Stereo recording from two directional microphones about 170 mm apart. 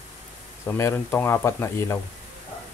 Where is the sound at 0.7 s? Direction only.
15° left (ahead or behind).